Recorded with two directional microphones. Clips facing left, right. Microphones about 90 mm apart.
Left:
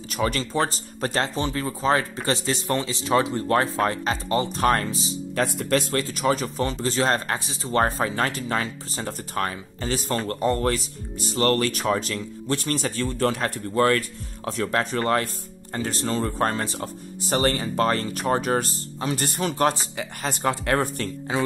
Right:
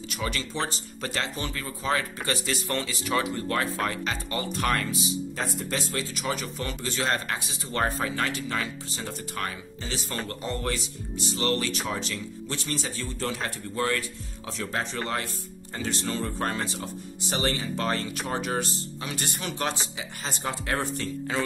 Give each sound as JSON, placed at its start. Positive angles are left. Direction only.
{"t": 0.1, "sound": "speech", "side_deg": 40}
{"t": 1.3, "sound": "speech", "side_deg": 30}
{"t": 5.3, "sound": "a man's voice", "side_deg": 65}